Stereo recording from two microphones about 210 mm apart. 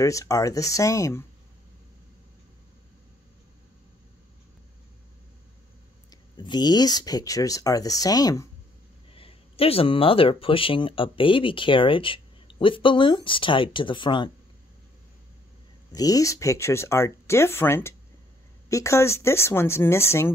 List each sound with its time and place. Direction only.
0.0 s speech: 15° left (ahead or behind)
6.3 s speech: 20° left (ahead or behind)
9.1 s speech: 25° left (ahead or behind)
15.9 s speech: 15° left (ahead or behind)